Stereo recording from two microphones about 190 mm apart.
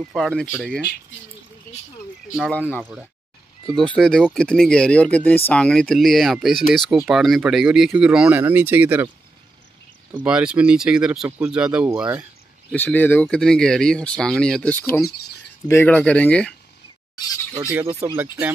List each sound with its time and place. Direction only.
0.1 s speech: centre (ahead or behind)
2.3 s speech: centre (ahead or behind)
10.1 s speech: 5° right (ahead or behind)
12.7 s speech: 10° left (ahead or behind)
18.1 s speech: 10° right (ahead or behind)